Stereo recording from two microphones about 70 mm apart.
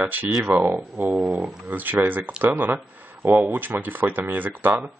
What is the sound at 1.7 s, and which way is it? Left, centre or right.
Speech, right.